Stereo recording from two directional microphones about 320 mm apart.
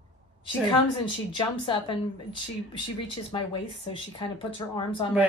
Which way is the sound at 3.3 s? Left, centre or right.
Centre.